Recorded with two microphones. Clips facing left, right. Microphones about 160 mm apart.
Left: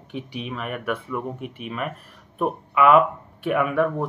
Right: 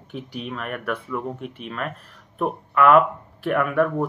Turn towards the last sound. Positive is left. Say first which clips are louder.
# right 1 dB
turn(degrees=0)  # may be behind; listen again after turning